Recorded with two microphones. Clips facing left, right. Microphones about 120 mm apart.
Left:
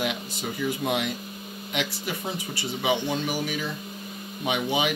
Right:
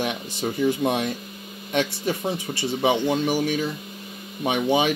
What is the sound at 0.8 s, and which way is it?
Speech, 35° right (ahead or behind).